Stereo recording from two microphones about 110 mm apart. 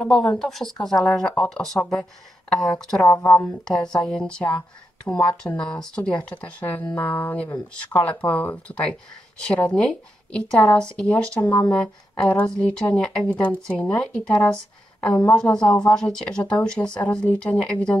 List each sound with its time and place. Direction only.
0.0 s speech: 10° left (ahead or behind)
3.3 s speech: 20° left (ahead or behind)
3.6 s speech: 5° left (ahead or behind)